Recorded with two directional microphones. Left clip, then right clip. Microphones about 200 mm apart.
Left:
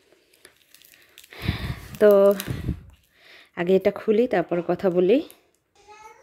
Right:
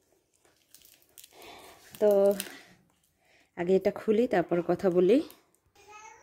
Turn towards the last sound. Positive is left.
turn(degrees=0)  # may be behind; listen again after turning